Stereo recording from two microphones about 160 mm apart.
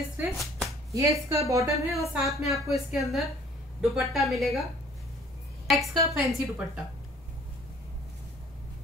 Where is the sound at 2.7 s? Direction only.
Centre (ahead or behind).